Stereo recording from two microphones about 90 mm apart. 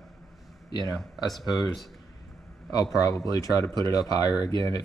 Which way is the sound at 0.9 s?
Centre (ahead or behind).